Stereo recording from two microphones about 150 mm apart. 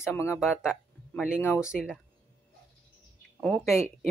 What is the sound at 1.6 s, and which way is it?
Speech, 5° right (ahead or behind).